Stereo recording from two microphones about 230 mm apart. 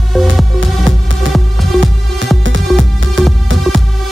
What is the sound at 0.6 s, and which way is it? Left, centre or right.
Music, right.